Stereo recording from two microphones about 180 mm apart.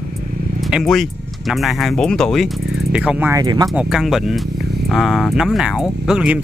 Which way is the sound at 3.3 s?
20° right (ahead or behind).